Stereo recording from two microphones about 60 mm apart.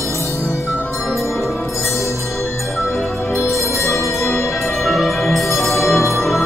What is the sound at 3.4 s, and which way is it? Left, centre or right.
Music, left.